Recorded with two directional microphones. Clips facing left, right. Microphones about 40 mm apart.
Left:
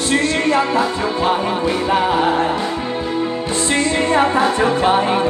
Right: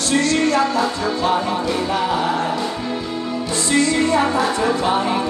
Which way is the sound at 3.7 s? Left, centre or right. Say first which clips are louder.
Even; left.